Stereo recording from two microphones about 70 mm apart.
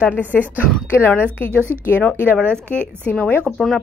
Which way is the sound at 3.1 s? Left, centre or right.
Left.